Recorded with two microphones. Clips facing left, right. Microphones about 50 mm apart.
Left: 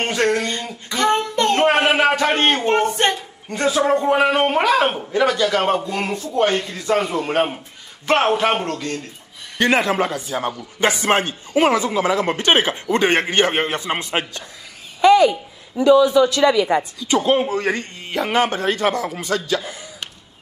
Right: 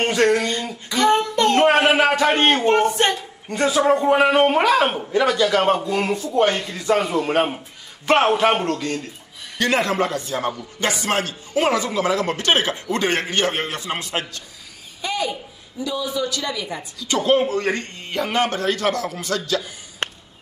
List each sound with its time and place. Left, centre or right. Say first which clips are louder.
0.0 s a sound: right 1 dB; centre
3.6 s a man's voice: even; centre
9.8 s a man's voice: left 1 dB; centre
10.8 s speech: left 5 dB; left
15.0 s speech: left 13 dB; left
17.1 s a man's voice: left 1 dB; centre
20.0 s music: right 8 dB; right